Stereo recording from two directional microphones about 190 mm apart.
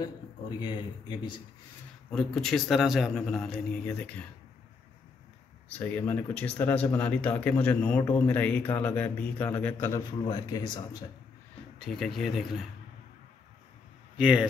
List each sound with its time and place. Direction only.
0.6 s speech: 25° left (ahead or behind)
2.0 s a man's voice: centre (ahead or behind)
5.7 s speech: 5° left (ahead or behind)
11.8 s a man's voice: centre (ahead or behind)
14.1 s a man's voice: 5° right (ahead or behind)